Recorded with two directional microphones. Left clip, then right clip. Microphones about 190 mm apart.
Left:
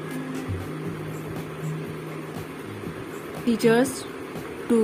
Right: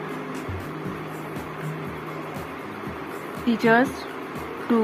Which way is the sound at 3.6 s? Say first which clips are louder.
Right 1 dB; 20° left (ahead or behind).